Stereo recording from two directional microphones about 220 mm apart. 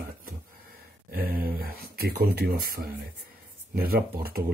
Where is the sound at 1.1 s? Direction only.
40° right (ahead or behind).